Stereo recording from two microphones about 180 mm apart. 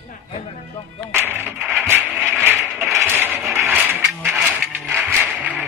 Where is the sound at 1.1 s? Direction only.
10° right (ahead or behind).